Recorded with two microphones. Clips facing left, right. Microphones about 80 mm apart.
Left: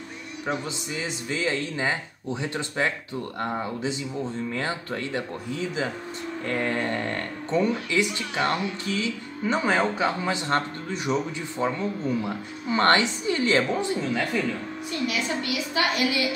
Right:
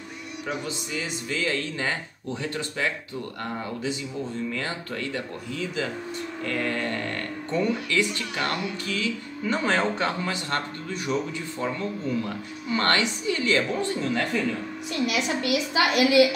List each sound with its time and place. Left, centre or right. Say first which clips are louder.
0.5 s speech: left 2 dB; left
9.6 s speech: left 1 dB; centre
10.2 s speech: left 3 dB; left
14.0 s speech: even; centre
15.0 s a woman's voice: right 3 dB; right